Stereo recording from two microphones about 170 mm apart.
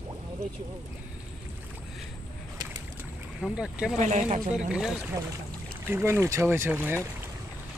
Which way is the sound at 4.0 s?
45° right (ahead or behind).